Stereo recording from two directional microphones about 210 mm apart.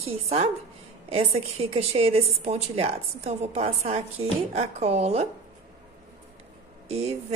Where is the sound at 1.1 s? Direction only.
30° right (ahead or behind).